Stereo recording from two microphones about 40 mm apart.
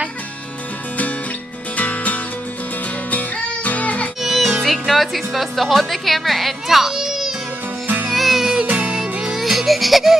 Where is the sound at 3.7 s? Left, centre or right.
Left.